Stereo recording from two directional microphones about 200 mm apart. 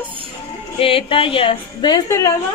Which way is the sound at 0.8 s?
25° left (ahead or behind).